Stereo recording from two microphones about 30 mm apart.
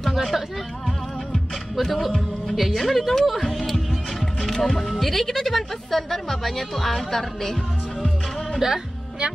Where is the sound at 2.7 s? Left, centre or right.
Centre.